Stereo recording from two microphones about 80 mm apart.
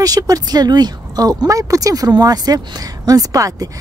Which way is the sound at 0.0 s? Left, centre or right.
Right.